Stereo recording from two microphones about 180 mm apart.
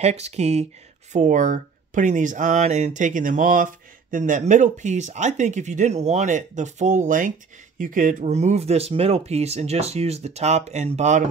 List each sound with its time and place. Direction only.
0.0 s speech: 35° right (ahead or behind)